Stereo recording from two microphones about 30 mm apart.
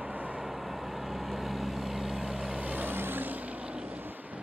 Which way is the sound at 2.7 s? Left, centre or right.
Right.